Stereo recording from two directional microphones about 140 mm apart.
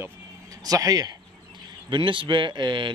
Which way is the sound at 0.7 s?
25° right (ahead or behind).